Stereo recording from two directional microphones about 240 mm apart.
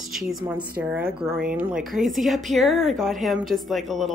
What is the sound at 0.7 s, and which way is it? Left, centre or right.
A woman's voice, centre.